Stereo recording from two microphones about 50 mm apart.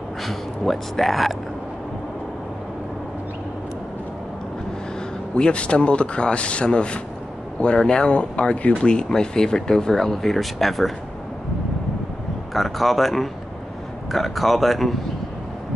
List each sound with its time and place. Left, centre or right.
0.2 s speech: centre
5.3 s speech: left; by 10.9 s centre
12.5 s speech: centre